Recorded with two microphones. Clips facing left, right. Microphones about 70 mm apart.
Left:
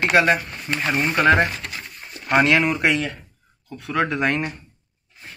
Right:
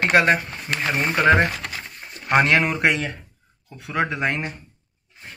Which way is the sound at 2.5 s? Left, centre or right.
Right.